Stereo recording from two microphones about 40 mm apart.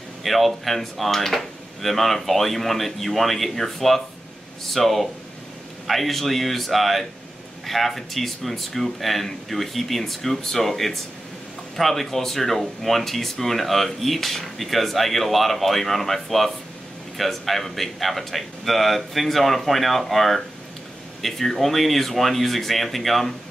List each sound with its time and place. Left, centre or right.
0.2 s speech: centre